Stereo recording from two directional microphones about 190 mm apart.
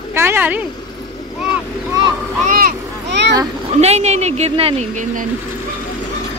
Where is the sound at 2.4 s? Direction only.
50° right (ahead or behind).